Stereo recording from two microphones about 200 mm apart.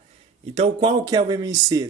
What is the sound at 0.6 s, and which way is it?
Speech, 20° right (ahead or behind).